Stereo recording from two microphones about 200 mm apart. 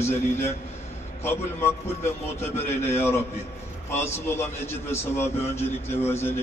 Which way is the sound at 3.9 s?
10° left (ahead or behind).